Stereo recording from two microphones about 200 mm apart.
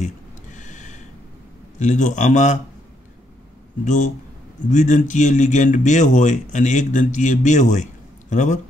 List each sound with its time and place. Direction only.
0.0 s a sound: 40° left (ahead or behind)
1.8 s speech: 35° left (ahead or behind)
3.8 s speech: 40° left (ahead or behind)